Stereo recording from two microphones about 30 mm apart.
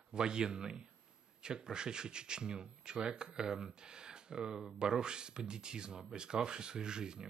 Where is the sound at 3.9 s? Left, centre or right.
Right.